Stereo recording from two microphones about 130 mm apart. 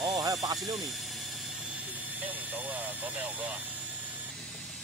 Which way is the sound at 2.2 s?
15° right (ahead or behind).